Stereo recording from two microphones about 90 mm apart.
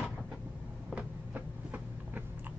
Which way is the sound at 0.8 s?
15° right (ahead or behind).